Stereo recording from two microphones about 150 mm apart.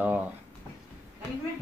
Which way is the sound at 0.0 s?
10° right (ahead or behind).